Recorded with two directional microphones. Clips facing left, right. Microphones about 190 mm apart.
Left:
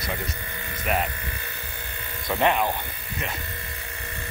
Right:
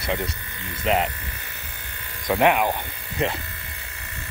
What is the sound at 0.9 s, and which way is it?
Speech, 90° right.